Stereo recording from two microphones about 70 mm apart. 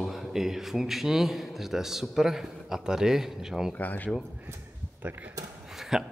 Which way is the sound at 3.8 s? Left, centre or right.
Left.